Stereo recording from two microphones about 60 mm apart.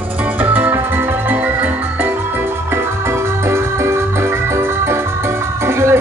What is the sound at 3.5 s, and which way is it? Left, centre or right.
Music, right.